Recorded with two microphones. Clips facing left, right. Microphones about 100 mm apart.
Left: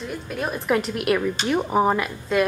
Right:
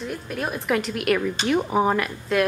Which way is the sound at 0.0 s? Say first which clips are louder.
Even; centre (ahead or behind).